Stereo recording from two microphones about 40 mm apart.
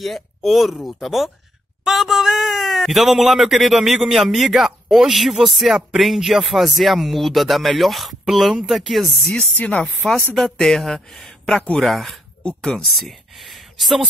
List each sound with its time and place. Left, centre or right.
0.0 s speech: centre
9.6 s speech: left
10.3 s speech: centre
11.8 s speech: centre